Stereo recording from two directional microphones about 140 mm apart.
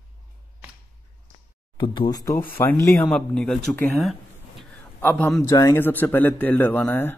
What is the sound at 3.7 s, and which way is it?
Speech, 15° left (ahead or behind).